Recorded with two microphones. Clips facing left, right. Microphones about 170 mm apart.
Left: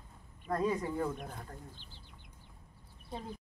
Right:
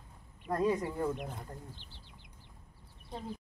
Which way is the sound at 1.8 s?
65° right (ahead or behind).